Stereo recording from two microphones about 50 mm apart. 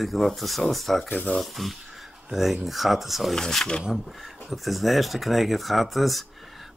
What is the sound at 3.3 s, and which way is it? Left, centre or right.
Speech, centre.